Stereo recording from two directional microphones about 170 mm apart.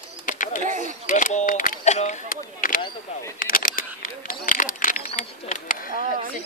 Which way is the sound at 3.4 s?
55° left (ahead or behind).